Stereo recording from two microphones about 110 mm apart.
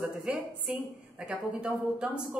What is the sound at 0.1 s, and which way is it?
A woman's voice, 5° right (ahead or behind).